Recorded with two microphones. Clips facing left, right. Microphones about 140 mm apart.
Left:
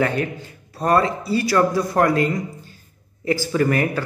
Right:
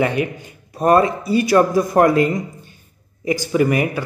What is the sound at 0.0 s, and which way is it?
A man's voice, 10° right (ahead or behind).